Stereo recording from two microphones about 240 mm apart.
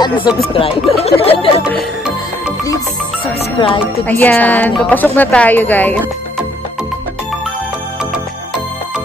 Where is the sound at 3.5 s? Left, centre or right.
Left.